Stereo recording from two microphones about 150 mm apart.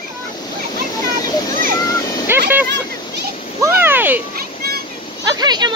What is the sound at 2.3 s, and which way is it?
Speech, 15° right (ahead or behind).